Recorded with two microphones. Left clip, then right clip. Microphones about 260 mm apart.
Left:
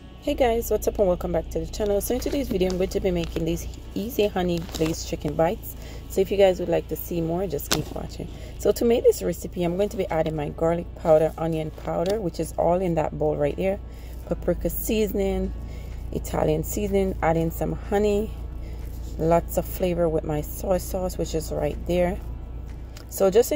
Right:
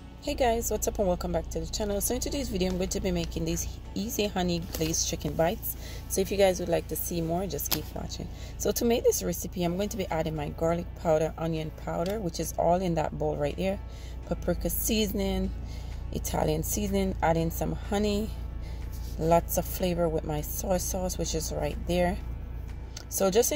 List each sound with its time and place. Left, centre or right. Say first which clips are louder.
0.2 s a woman's voice: left 5 dB; centre
8.6 s a woman's voice: left 6 dB; centre
19.1 s a woman's voice: left 3 dB; centre
23.1 s a woman's voice: left 6 dB; centre